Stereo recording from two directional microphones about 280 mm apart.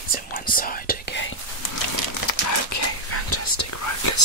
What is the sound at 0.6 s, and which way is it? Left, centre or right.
Whispering, left.